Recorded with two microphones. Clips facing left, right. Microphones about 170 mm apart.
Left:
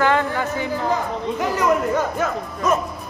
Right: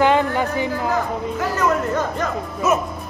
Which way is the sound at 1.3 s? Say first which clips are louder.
Left 1 dB; 15° left (ahead or behind).